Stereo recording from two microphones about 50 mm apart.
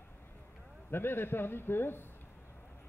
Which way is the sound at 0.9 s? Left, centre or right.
Left.